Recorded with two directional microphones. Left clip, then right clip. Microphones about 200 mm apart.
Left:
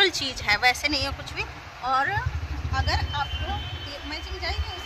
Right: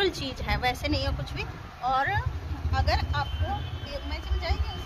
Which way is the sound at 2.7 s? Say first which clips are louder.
Left 1 dB; 20° right (ahead or behind).